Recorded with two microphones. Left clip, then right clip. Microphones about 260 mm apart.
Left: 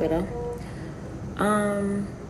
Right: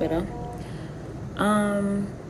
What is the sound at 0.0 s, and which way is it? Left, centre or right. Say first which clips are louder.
Speech: left 1 dB; centre.